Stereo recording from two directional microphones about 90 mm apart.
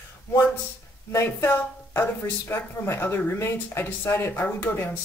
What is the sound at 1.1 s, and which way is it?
A woman's voice, 25° left (ahead or behind).